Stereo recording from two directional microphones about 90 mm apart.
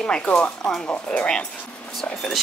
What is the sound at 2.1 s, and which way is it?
Whispering, centre (ahead or behind).